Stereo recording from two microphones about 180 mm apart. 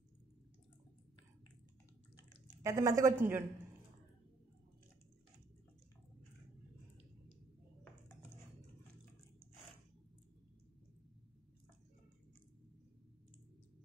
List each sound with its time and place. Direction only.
2.6 s a woman's voice: 15° right (ahead or behind)